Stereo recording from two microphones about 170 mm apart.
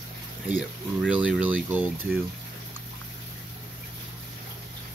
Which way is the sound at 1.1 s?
10° right (ahead or behind).